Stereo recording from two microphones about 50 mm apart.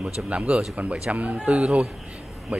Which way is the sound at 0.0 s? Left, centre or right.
Right.